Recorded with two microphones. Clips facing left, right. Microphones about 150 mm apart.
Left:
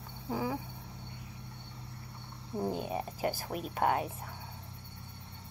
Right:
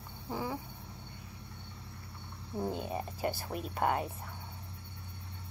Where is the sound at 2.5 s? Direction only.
10° left (ahead or behind).